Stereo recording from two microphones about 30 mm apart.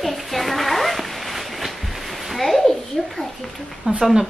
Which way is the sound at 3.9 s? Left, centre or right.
Right.